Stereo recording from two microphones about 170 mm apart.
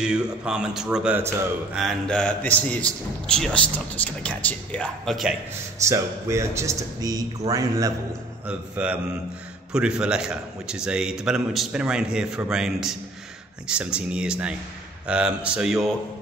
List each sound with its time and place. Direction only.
0.0 s a man's voice: 5° right (ahead or behind)
5.9 s speech: 15° right (ahead or behind)
8.5 s a man's voice: 10° right (ahead or behind)